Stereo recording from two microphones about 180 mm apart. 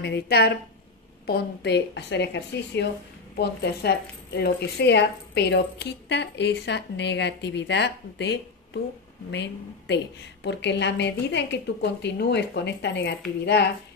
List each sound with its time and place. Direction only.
0.0 s a woman's voice: 65° left (ahead or behind)